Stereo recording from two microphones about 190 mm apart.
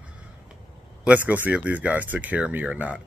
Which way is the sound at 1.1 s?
10° right (ahead or behind).